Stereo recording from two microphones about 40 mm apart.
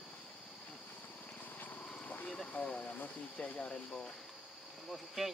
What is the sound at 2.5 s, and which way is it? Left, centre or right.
Speech, left.